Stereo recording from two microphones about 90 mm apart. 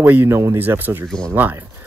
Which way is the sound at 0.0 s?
20° right (ahead or behind).